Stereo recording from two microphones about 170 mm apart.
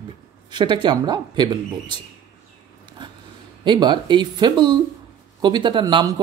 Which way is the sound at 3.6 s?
25° right (ahead or behind).